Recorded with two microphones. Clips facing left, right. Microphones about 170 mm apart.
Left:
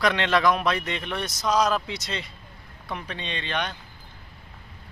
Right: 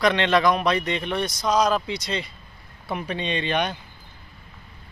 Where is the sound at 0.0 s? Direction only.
5° left (ahead or behind).